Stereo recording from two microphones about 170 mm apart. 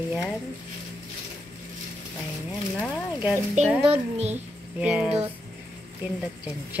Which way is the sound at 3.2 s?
10° right (ahead or behind).